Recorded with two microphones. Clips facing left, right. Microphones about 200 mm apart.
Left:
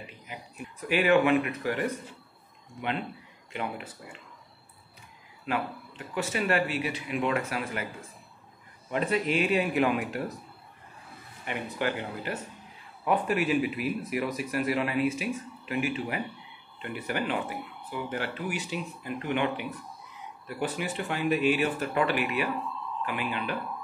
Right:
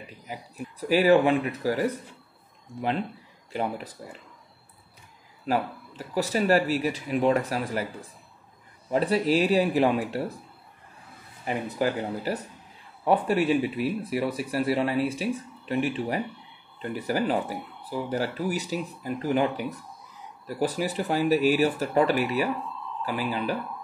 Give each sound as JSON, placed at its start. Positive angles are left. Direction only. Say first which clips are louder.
{"t": 0.3, "sound": "speech", "louder": "right 6 dB", "side_deg": -40}
{"t": 3.5, "sound": "speech", "louder": "right 5 dB", "side_deg": -35}
{"t": 5.4, "sound": "speech", "louder": "right 4 dB", "side_deg": -40}
{"t": 8.9, "sound": "speech", "louder": "right 4 dB", "side_deg": -35}
{"t": 11.4, "sound": "speech", "louder": "right 4 dB", "side_deg": -35}